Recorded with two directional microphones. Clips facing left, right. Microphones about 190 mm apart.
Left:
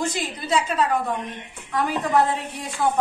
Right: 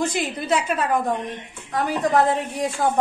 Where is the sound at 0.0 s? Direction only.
60° right (ahead or behind).